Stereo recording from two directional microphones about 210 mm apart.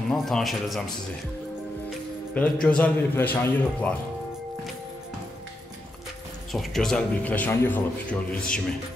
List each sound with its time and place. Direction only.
0.1 s a man's voice: centre (ahead or behind)
2.3 s a man's voice: 5° left (ahead or behind)
6.5 s a man's voice: centre (ahead or behind)